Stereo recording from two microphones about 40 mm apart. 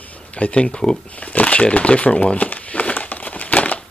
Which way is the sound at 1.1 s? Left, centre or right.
Left.